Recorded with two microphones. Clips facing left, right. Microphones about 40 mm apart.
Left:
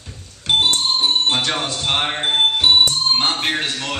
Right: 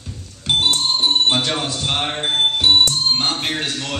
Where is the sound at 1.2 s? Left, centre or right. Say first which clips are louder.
Right 1 dB; centre.